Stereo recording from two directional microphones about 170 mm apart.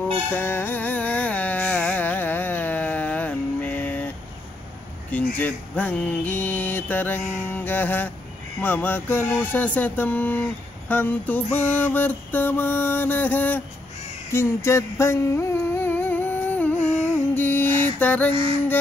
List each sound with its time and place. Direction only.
0.3 s carnatic music: 15° left (ahead or behind)
5.1 s mantra: 10° left (ahead or behind)
14.3 s a sound: 15° left (ahead or behind)